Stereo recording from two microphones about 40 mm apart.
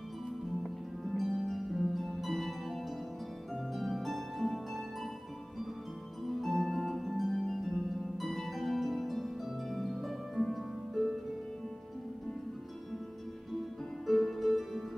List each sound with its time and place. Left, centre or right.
1.0 s harp: centre
6.2 s music: centre
7.1 s harp: centre
8.2 s harp: centre
14.0 s music: centre